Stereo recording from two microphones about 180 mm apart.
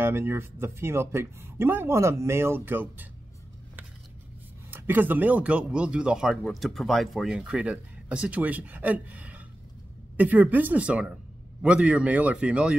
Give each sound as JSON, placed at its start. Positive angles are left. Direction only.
{"t": 0.0, "sound": "speech", "side_deg": -10}
{"t": 4.6, "sound": "speech", "side_deg": -10}